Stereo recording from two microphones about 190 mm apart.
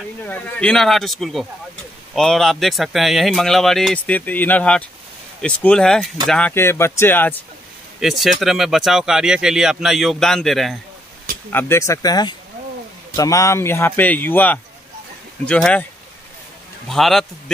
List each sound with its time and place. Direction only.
0.2 s speech: 10° left (ahead or behind)
8.0 s speech: centre (ahead or behind)
11.5 s speech: 15° left (ahead or behind)
16.8 s speech: centre (ahead or behind)